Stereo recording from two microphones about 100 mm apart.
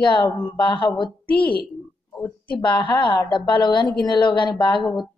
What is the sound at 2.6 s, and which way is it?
A woman's voice, 50° left (ahead or behind).